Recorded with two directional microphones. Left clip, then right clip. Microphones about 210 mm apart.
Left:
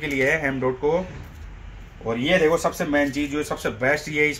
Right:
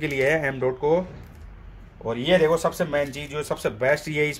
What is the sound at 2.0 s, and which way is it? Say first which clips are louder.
Speech: even; 40° right (ahead or behind).